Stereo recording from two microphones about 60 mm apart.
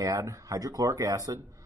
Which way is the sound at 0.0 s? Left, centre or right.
Right.